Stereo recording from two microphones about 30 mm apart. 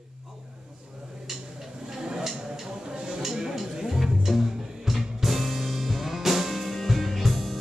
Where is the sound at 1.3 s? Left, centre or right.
Centre.